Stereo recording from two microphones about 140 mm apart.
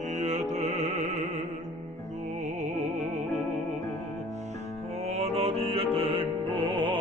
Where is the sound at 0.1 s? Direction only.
55° right (ahead or behind).